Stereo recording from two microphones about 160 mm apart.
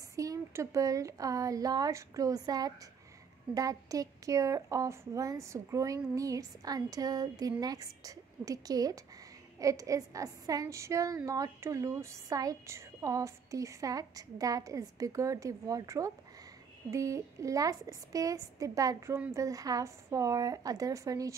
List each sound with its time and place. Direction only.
0.1 s speech: 20° right (ahead or behind)